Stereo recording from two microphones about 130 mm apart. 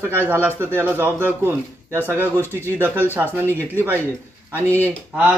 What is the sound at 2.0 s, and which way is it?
Speech, 15° left (ahead or behind).